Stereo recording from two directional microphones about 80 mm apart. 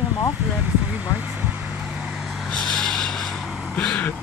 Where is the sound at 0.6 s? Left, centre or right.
Centre.